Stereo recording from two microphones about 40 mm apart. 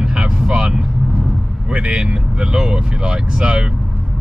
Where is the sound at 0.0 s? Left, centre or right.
Centre.